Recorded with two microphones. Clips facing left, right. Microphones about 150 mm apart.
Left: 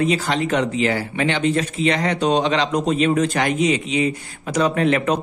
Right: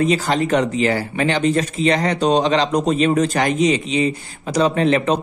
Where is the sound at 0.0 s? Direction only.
40° right (ahead or behind).